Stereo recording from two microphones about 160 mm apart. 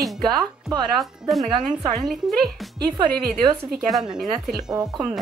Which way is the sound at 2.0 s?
Centre (ahead or behind).